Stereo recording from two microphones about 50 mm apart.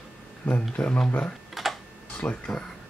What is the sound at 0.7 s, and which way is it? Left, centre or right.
Speech, left.